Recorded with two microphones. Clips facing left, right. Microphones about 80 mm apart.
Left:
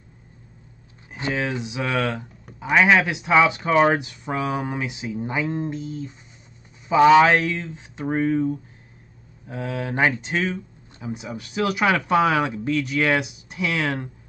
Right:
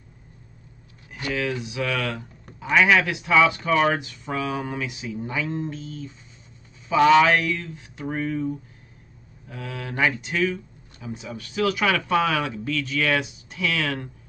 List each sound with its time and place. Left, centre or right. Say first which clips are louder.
1.1 s speech: left 1 dB; left
9.5 s speech: left 6 dB; left